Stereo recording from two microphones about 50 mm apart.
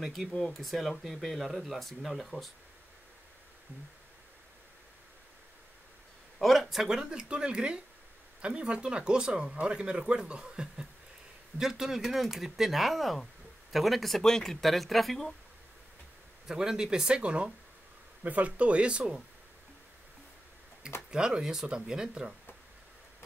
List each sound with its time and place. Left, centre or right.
0.0 s speech: centre
0.4 s speech: centre
6.4 s a sound: centre
6.9 s speech: centre
16.4 s speech: centre
21.1 s speech: centre